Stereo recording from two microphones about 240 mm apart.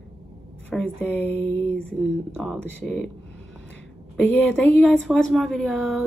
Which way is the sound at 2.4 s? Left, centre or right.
Centre.